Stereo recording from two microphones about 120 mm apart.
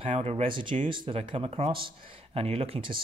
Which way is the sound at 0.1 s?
60° right (ahead or behind).